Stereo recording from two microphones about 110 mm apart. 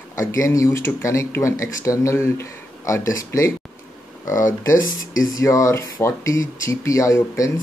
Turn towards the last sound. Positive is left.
turn(degrees=25)  # may be behind; listen again after turning